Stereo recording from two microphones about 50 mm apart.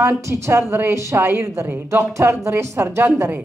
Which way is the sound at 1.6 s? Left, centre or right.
Right.